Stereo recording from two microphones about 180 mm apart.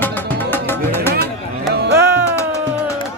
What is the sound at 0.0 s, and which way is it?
Music, 10° left (ahead or behind).